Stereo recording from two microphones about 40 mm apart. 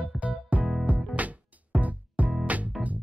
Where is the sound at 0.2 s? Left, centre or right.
Right.